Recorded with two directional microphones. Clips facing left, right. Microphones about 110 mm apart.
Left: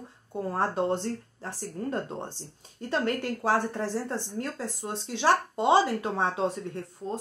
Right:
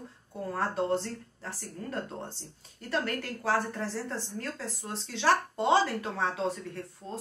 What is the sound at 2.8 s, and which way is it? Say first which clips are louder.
A woman's voice: left 4 dB; 20° left (ahead or behind).